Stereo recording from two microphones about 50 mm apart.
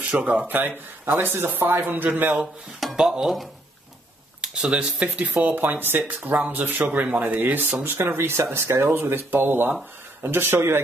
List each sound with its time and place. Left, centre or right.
0.1 s a man's voice: right
3.0 s speech: centre
4.4 s speech: centre
5.4 s a man's voice: right
6.9 s speech: right
7.2 s speech: right
8.9 s speech: right